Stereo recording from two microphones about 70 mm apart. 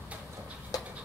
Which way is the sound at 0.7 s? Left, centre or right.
Left.